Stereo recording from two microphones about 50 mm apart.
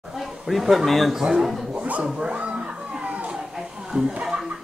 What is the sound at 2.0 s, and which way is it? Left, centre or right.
Speech, centre.